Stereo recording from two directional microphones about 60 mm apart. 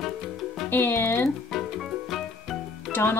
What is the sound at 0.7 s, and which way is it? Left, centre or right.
Speech, left.